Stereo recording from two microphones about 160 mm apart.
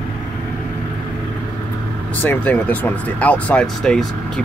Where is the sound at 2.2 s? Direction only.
10° left (ahead or behind).